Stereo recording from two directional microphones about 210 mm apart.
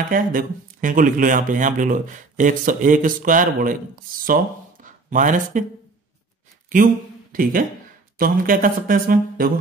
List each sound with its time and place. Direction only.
0.1 s speech: 40° right (ahead or behind)
6.7 s speech: 40° right (ahead or behind)